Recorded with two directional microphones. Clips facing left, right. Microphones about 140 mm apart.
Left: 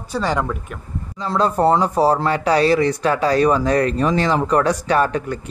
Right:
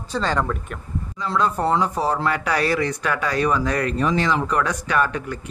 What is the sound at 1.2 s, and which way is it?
Speech, 35° left (ahead or behind).